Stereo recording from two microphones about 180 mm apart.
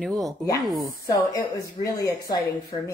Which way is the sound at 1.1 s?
20° left (ahead or behind).